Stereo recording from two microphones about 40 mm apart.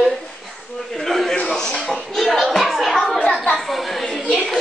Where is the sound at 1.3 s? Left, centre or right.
Left; by 4.0 s centre.